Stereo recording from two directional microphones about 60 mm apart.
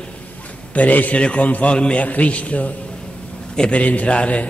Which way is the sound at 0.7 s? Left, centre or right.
Left.